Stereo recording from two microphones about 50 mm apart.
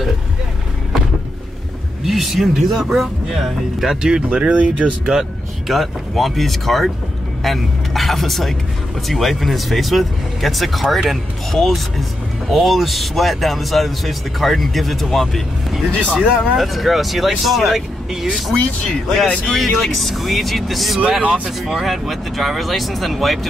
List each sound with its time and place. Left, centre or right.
2.0 s speech: centre
5.7 s speech: centre
15.9 s speech: left
16.5 s speech: centre
18.5 s speech: centre
19.2 s speech: left
19.8 s speech: centre